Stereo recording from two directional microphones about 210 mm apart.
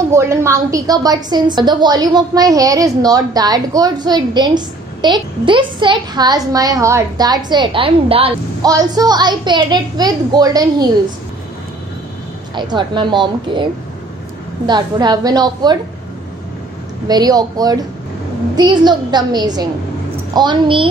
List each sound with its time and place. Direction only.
0.1 s a woman's voice: 15° right (ahead or behind)
12.5 s a woman's voice: 20° right (ahead or behind)
14.7 s a woman's voice: 20° right (ahead or behind)
17.1 s a woman's voice: 20° right (ahead or behind)